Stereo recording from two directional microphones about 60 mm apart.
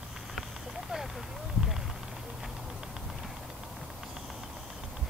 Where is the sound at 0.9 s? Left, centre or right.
Centre.